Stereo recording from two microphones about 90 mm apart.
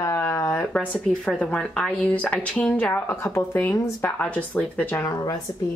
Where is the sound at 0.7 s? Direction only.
15° left (ahead or behind).